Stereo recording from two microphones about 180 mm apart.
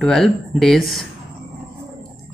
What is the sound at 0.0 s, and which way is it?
Speech, centre (ahead or behind).